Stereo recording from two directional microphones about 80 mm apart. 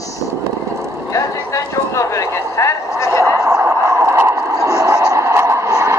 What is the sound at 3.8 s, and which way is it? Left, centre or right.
Vehicle, right.